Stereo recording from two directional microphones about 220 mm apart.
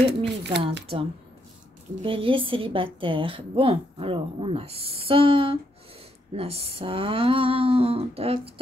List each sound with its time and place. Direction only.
0.0 s speech: 50° right (ahead or behind)
2.0 s a woman's voice: 25° right (ahead or behind)